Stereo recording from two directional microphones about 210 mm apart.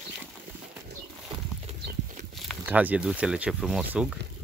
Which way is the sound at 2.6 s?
5° right (ahead or behind).